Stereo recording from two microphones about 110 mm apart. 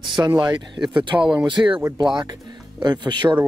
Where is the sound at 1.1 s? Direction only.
10° right (ahead or behind).